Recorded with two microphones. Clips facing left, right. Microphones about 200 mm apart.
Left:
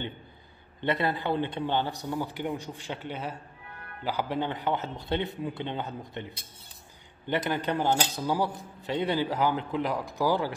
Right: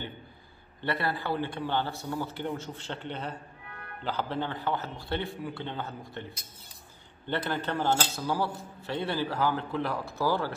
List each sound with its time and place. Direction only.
0.7 s a man's voice: 20° left (ahead or behind)